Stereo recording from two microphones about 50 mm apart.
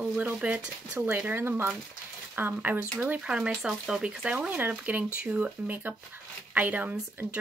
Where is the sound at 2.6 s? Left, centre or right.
Right.